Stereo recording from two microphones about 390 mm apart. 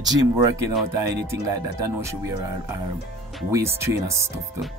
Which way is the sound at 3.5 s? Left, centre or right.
Centre.